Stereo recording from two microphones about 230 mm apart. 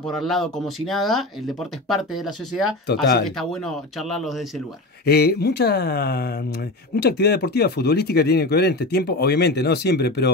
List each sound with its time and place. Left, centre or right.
0.0 s speech: centre
2.9 s speech: left
4.0 s speech: centre
5.0 s speech: left